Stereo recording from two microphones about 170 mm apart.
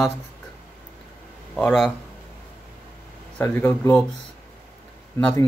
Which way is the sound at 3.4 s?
15° left (ahead or behind).